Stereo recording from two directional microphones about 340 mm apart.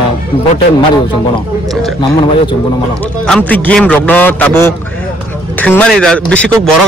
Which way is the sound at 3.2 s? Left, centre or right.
Centre.